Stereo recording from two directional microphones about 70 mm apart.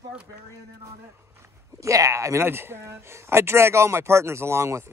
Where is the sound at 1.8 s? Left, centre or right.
Right.